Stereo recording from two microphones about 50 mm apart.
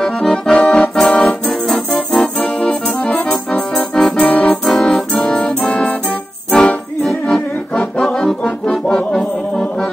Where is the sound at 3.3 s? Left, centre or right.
Left.